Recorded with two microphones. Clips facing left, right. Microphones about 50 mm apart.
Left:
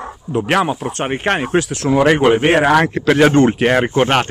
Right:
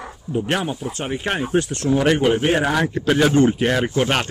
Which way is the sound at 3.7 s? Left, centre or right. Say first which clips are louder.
Left 5 dB; left.